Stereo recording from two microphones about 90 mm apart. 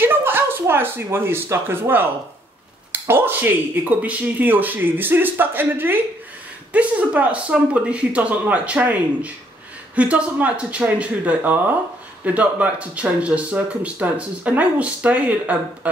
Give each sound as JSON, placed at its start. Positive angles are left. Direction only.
{"t": 0.0, "sound": "speech", "side_deg": -25}